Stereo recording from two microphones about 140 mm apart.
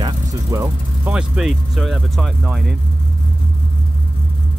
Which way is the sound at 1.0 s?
5° right (ahead or behind).